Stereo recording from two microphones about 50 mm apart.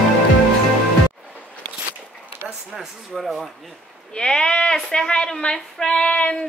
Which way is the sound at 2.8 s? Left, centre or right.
Centre.